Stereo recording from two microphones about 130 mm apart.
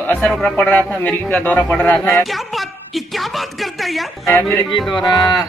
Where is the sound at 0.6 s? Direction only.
10° left (ahead or behind).